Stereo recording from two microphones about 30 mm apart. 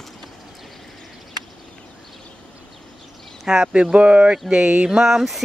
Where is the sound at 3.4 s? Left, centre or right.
Centre.